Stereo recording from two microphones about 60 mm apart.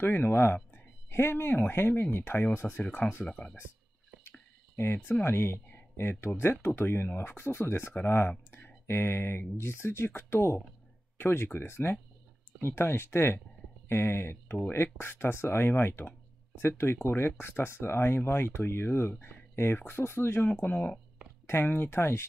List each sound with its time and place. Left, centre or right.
0.0 s speech: left
4.8 s speech: left
7.9 s speech: left
20.4 s speech: left
21.5 s speech: left